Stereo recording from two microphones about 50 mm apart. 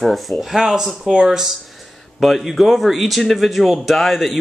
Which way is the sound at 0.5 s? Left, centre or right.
Centre.